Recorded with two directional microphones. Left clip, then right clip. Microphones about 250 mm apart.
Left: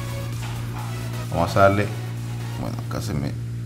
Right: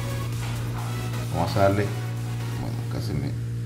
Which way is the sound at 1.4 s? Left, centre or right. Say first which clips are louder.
Left 5 dB; centre.